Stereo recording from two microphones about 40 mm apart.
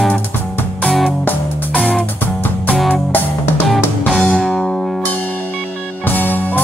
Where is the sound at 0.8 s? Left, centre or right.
Centre.